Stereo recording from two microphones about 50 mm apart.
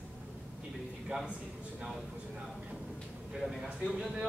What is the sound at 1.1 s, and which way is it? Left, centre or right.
Speech, centre.